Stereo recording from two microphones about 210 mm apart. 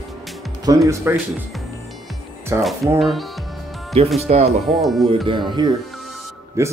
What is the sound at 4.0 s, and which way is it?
Speech, 25° right (ahead or behind).